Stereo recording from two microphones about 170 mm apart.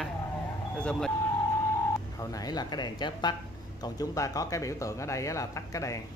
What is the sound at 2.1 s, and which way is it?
Speech, 20° left (ahead or behind).